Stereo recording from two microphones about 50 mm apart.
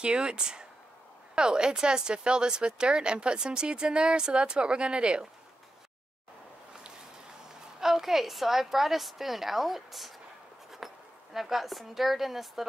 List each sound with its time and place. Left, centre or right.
0.0 s speech: centre
7.4 s a woman's voice: centre
10.8 s a sound: centre
11.3 s a woman's voice: centre